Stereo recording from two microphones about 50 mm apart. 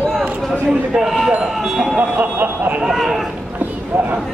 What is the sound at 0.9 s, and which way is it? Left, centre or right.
Speech, centre.